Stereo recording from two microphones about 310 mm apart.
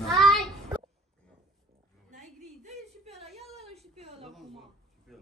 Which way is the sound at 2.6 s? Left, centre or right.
Centre.